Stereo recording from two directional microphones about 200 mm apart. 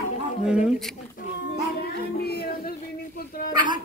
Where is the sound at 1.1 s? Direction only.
50° left (ahead or behind).